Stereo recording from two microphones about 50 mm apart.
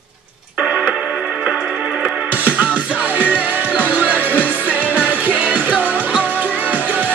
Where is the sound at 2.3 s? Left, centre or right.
Right.